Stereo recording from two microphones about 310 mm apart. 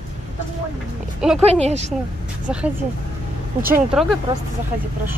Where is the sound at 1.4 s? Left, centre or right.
Centre.